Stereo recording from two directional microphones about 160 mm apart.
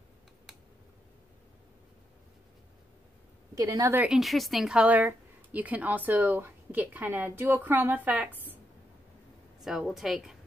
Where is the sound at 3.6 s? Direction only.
20° right (ahead or behind).